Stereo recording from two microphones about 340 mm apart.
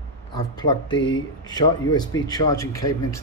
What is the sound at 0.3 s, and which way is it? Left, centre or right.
Speech, centre.